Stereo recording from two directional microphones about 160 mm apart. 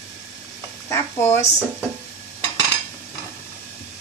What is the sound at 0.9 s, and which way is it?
Speech, 15° left (ahead or behind).